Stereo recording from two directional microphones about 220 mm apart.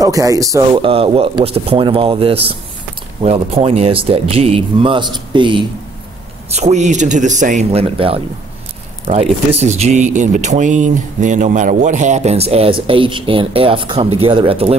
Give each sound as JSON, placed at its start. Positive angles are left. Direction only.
{"t": 0.0, "sound": "speech", "side_deg": -15}